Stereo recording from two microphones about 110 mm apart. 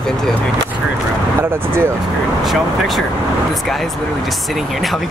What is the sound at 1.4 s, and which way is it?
Speech, 20° right (ahead or behind).